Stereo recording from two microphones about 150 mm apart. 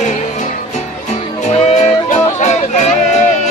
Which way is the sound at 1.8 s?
50° left (ahead or behind).